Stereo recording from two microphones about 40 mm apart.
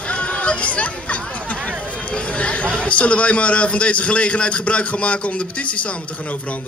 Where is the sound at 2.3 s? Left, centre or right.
Left.